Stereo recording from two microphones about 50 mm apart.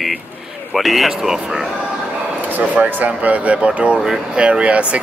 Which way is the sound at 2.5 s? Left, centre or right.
Right.